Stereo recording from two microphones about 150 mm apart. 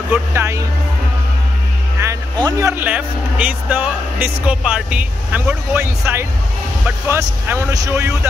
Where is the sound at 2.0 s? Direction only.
20° right (ahead or behind).